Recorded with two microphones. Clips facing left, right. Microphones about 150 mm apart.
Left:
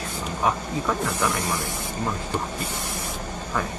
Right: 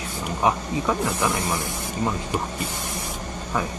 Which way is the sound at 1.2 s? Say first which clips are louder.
Right 1 dB; 20° right (ahead or behind).